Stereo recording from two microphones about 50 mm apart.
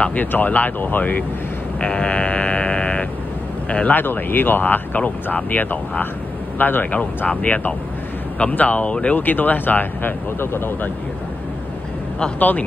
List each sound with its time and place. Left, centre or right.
0.1 s speech: left
1.8 s sheep: centre
3.9 s speech: left
9.1 s speech: left
12.4 s speech: left